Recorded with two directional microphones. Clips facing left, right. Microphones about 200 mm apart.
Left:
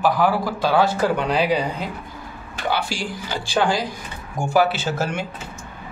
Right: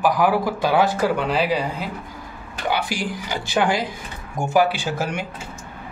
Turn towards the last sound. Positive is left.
turn(degrees=-15)  # may be behind; listen again after turning